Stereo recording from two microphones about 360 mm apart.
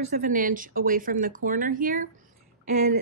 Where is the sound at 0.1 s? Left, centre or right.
Right.